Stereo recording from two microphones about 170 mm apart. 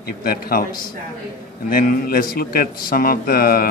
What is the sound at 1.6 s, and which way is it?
A man's voice, 60° left (ahead or behind).